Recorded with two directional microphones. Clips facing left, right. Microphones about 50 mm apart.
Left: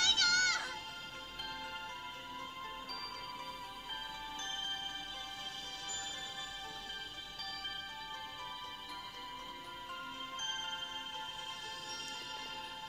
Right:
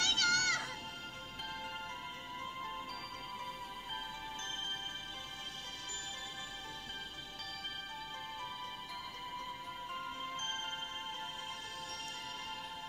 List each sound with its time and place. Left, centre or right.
0.0 s music: right
9.9 s music: right